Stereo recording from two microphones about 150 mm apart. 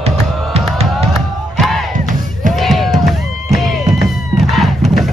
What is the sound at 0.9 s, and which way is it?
Music, centre (ahead or behind).